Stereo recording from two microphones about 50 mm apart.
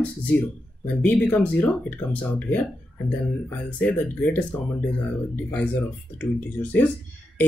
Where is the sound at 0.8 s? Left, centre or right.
Left.